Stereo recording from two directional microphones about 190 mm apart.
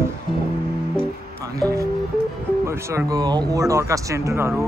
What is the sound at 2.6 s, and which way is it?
Speech, 15° right (ahead or behind).